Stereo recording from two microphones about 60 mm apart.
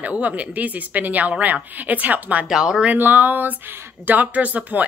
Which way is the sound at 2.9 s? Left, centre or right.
Right.